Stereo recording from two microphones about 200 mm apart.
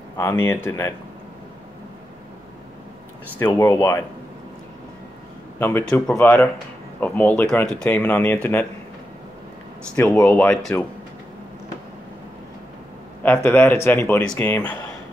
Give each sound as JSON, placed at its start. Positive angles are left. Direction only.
{"t": 0.2, "sound": "speech", "side_deg": 15}
{"t": 3.3, "sound": "speech", "side_deg": 10}
{"t": 5.6, "sound": "speech", "side_deg": 10}
{"t": 9.9, "sound": "speech", "side_deg": 5}
{"t": 13.2, "sound": "speech", "side_deg": 10}